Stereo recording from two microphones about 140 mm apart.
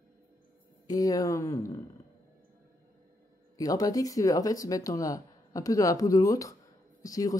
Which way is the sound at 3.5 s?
25° left (ahead or behind).